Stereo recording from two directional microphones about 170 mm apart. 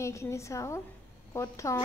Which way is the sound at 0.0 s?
15° left (ahead or behind).